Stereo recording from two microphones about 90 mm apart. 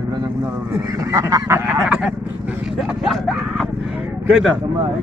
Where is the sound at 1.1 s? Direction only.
40° right (ahead or behind).